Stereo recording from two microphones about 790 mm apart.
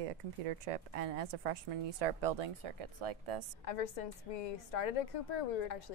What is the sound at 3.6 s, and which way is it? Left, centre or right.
A woman's voice, left.